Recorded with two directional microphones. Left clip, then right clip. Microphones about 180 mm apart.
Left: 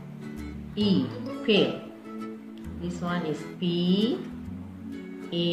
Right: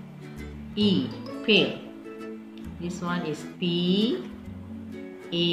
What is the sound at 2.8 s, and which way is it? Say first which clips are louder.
Speech: even; 15° right (ahead or behind).